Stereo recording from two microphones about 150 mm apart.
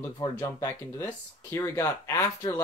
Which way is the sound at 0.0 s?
20° left (ahead or behind).